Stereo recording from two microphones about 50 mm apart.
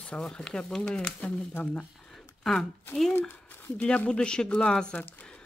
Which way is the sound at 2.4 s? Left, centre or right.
Centre.